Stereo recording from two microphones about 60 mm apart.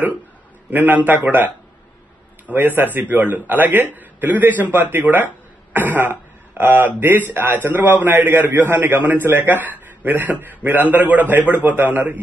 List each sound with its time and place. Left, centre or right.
0.7 s a man's voice: right
2.5 s a man's voice: right